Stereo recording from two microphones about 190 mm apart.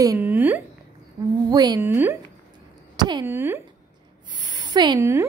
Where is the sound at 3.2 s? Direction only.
10° right (ahead or behind).